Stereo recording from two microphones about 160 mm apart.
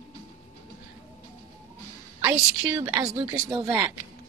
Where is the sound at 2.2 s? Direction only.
20° right (ahead or behind).